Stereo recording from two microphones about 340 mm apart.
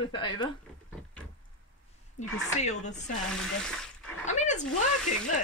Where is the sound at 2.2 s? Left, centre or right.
Centre.